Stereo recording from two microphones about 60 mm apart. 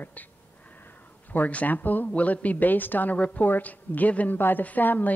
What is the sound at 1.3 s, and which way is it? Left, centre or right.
Speech, left.